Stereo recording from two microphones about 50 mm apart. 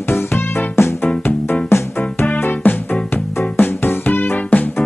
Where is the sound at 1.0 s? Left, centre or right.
Left.